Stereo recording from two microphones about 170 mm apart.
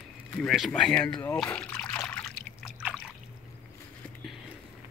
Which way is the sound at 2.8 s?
5° right (ahead or behind).